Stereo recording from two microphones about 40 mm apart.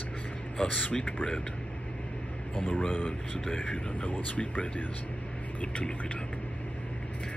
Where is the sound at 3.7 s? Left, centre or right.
Left.